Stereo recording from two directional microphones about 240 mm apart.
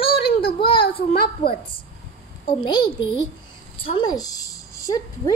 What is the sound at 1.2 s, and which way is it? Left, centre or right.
A child's voice, left.